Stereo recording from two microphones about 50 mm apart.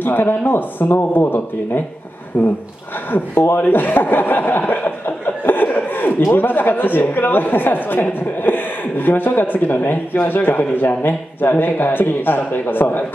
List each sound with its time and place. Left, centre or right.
0.0 s speech: left